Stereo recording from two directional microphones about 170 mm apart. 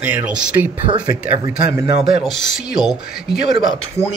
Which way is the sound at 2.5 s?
Centre (ahead or behind).